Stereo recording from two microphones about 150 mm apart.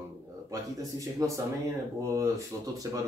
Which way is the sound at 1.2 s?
25° right (ahead or behind).